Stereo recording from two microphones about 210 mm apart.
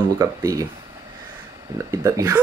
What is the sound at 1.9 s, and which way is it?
Speech, 15° right (ahead or behind).